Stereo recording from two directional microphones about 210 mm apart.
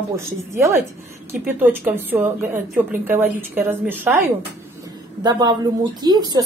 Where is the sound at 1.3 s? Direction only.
10° right (ahead or behind).